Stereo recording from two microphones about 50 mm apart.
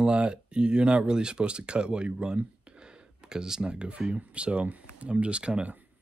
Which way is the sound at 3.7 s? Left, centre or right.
Right.